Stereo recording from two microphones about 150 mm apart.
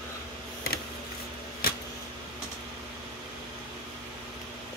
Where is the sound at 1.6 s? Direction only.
85° left.